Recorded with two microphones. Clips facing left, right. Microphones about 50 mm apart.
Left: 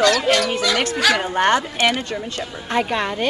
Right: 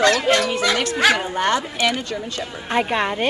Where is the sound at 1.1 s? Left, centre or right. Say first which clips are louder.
Left 3 dB; left.